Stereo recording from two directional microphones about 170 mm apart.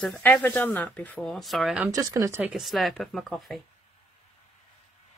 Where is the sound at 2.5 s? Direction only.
Centre (ahead or behind).